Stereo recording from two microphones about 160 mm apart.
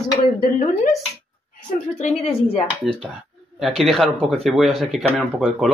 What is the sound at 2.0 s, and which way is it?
Speech, 40° left (ahead or behind).